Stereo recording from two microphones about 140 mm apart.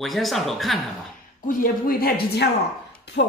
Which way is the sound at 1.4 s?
85° left.